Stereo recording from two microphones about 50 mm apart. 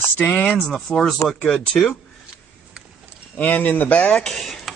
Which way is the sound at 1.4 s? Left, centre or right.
Left.